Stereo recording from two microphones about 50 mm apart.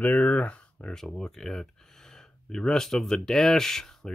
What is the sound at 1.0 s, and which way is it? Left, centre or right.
Speech, centre.